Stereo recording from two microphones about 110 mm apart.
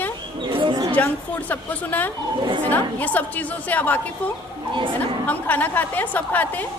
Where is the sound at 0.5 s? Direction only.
50° right (ahead or behind).